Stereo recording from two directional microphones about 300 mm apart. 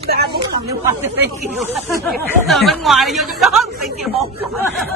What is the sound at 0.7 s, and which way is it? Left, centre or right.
Speech, centre.